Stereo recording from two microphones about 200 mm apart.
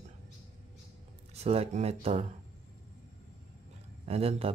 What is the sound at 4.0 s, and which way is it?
Speech, 30° right (ahead or behind).